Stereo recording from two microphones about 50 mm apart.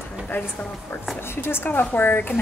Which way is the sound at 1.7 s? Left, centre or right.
Left.